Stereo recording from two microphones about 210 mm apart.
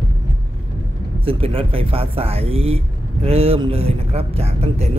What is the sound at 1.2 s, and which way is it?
Speech, 25° right (ahead or behind).